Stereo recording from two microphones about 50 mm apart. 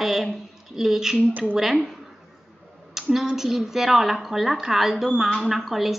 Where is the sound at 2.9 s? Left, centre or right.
Centre.